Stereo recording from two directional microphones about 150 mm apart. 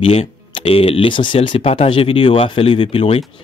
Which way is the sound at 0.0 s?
40° left (ahead or behind).